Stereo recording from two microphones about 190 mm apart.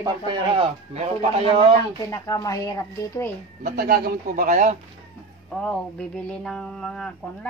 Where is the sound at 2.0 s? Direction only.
20° left (ahead or behind).